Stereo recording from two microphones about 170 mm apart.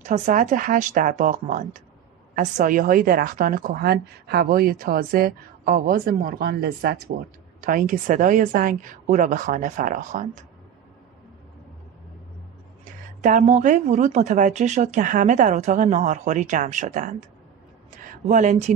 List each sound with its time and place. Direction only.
0.0 s a woman's voice: 45° right (ahead or behind); by 7.0 s 65° right (ahead or behind)
7.6 s speech: 55° right (ahead or behind)
12.8 s speech: 50° right (ahead or behind)
17.9 s a sound: 45° right (ahead or behind)